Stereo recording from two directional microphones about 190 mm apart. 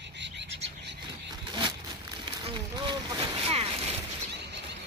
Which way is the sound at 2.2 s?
25° right (ahead or behind).